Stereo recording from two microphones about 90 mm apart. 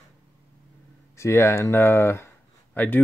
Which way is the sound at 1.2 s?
30° left (ahead or behind).